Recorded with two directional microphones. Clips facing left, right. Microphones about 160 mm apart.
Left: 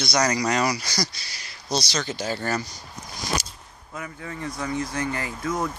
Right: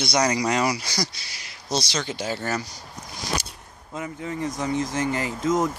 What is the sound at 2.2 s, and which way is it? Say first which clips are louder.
Speech: left 1 dB; 5° right (ahead or behind).